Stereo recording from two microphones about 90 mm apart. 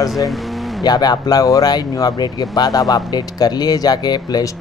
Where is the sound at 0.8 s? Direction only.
50° left (ahead or behind).